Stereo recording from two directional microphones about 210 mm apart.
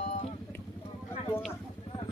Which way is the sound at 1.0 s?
10° left (ahead or behind).